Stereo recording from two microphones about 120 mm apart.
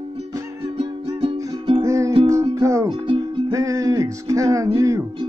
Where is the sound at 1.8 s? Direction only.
25° right (ahead or behind).